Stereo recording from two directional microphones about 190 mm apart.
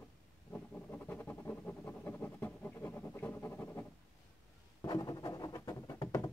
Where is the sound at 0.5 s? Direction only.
10° left (ahead or behind).